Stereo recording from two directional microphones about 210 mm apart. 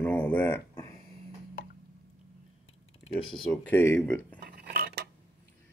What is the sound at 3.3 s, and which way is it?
Speech, 5° left (ahead or behind).